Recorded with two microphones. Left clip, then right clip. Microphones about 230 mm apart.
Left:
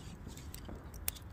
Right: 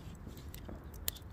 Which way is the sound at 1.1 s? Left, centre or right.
Right.